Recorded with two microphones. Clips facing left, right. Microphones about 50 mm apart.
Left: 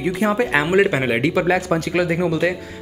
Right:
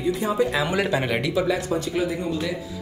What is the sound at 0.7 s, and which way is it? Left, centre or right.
Speech, left.